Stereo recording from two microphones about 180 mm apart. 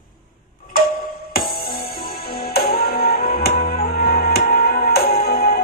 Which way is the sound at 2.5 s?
60° left (ahead or behind).